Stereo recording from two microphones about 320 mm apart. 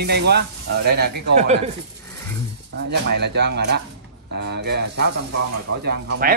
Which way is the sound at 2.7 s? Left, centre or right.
Right.